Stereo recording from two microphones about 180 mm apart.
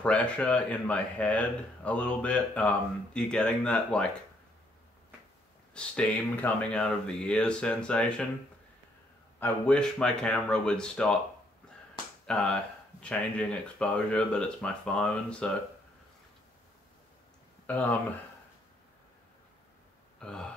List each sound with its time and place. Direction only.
0.0 s speech: 5° left (ahead or behind)
5.8 s speech: 5° left (ahead or behind)
9.4 s speech: 5° left (ahead or behind)
12.3 s speech: 5° left (ahead or behind)
17.6 s speech: 10° left (ahead or behind)
20.2 s a sound: 5° left (ahead or behind)